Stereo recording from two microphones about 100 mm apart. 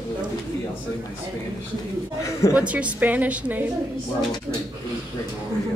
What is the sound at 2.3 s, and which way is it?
Speech, 30° left (ahead or behind).